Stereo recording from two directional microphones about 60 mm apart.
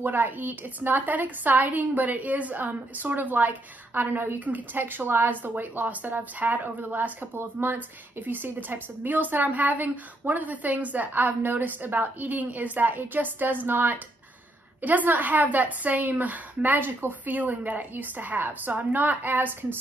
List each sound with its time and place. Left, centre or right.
0.0 s a woman's voice: right